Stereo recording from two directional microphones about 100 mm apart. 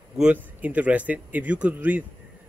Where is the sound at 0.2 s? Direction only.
15° right (ahead or behind).